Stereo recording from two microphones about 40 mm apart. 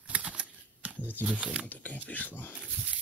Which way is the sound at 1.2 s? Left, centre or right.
Right.